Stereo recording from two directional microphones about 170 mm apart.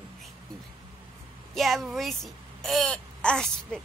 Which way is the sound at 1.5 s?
Centre (ahead or behind).